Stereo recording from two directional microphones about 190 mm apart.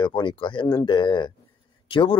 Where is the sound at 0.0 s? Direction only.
25° left (ahead or behind).